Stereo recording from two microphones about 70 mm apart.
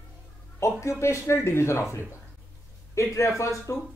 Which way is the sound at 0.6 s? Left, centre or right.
Left.